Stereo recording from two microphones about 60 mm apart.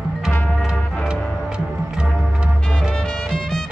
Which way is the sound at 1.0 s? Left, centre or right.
Centre.